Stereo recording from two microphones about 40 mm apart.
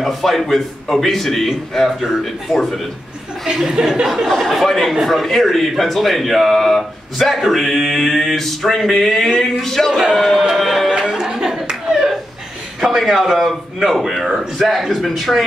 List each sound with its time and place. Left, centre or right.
0.0 s speech: centre
3.4 s speech: centre
4.3 s speech: centre
7.4 s male singing: centre
10.1 s speech: centre
10.9 s a sound: centre
12.8 s speech: centre